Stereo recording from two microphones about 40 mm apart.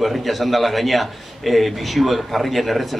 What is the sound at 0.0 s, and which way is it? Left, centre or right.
Speech, centre.